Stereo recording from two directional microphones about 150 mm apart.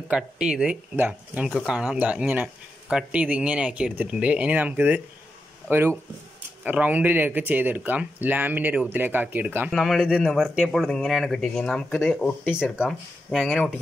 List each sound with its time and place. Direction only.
0.1 s speech: 5° right (ahead or behind)
9.7 s a man's voice: centre (ahead or behind)
12.7 s a man's voice: 5° right (ahead or behind)